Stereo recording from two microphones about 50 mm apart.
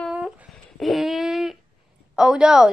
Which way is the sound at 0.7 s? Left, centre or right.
Centre.